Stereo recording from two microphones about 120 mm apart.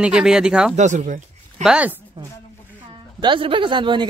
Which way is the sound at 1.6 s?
10° right (ahead or behind).